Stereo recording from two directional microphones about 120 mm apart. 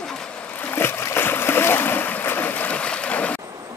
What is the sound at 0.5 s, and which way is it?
Boat, 15° left (ahead or behind).